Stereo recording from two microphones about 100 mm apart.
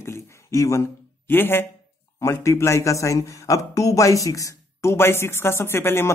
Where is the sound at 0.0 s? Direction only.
25° left (ahead or behind).